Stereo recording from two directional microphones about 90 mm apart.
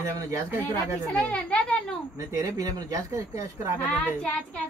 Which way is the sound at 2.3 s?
40° right (ahead or behind).